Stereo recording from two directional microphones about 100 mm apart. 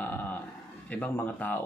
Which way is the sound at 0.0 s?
20° left (ahead or behind).